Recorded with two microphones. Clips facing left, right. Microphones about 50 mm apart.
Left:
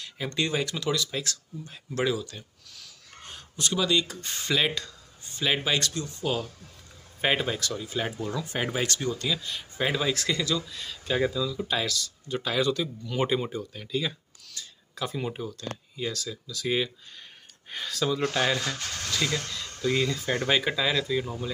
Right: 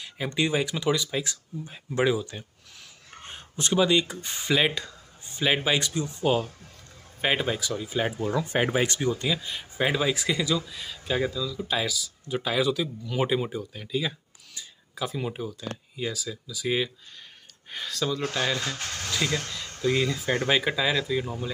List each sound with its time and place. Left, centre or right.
0.0 s speech: centre
7.2 s speech: centre
8.1 s speech: right; by 11.6 s centre
11.6 s speech: centre
19.0 s speech: centre